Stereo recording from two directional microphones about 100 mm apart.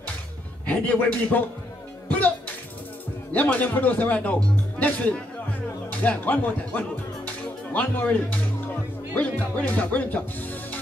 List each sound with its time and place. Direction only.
0.7 s speech: 15° left (ahead or behind)
2.0 s music: 15° left (ahead or behind)
3.3 s speech: 15° left (ahead or behind)